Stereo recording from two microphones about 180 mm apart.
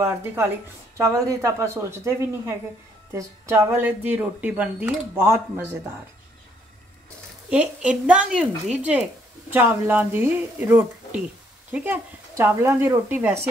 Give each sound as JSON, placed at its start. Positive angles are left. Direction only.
{"t": 0.0, "sound": "a woman's voice", "side_deg": -15}
{"t": 7.4, "sound": "a woman's voice", "side_deg": -5}